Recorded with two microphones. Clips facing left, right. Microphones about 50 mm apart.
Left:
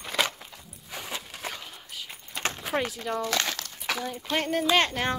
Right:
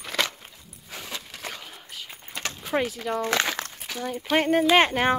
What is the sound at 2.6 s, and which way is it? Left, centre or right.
Speech, centre.